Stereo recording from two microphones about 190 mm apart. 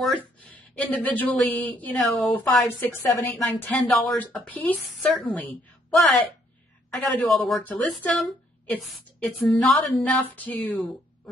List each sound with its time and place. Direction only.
0.4 s a woman's voice: 10° left (ahead or behind)